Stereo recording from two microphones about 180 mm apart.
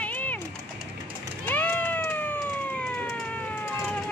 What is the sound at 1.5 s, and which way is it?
Cat, 10° left (ahead or behind).